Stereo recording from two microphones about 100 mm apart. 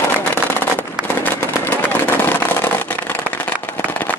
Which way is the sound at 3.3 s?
15° left (ahead or behind).